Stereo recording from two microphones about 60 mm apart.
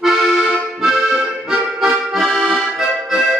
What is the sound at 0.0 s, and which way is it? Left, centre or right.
Accordion, centre.